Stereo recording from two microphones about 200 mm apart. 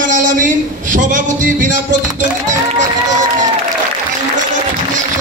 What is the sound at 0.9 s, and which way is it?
Music, 40° right (ahead or behind).